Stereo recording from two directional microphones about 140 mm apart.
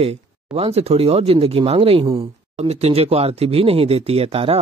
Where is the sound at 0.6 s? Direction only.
45° right (ahead or behind).